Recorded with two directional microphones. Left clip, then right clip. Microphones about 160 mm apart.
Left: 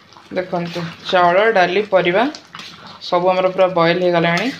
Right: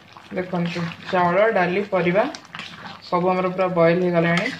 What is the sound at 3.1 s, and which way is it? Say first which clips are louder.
Speech: left 6 dB; 65° left (ahead or behind).